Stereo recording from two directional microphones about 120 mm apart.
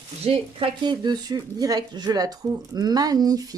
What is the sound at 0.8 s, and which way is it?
Speech, 35° right (ahead or behind).